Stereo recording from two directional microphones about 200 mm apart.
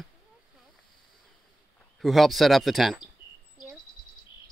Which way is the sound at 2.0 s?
Centre (ahead or behind).